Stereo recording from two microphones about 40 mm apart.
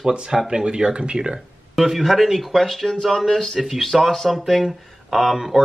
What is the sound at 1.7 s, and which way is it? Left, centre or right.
Speech, centre.